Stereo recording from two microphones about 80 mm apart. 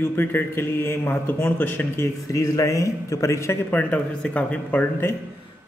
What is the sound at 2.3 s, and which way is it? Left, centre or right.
Speech, left.